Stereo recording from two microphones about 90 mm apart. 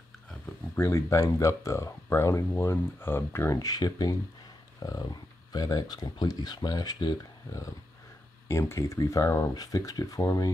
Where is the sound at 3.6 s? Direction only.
45° left (ahead or behind).